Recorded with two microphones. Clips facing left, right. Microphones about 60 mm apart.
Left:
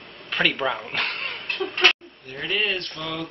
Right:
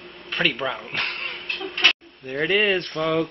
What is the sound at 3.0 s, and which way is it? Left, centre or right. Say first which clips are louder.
Speech: right 9 dB; right.